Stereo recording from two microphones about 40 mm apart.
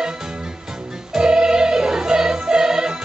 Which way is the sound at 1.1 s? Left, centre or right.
Centre.